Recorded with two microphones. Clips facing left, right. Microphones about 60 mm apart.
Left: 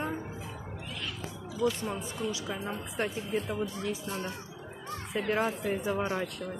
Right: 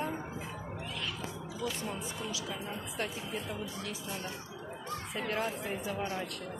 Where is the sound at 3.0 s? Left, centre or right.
Left.